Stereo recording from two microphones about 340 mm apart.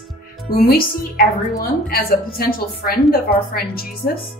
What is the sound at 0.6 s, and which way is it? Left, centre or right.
A woman's voice, left.